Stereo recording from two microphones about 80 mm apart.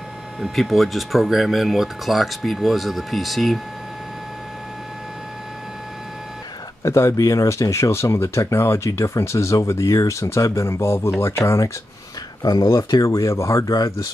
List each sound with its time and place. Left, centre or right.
0.4 s speech: centre
6.8 s speech: left
12.4 s speech: left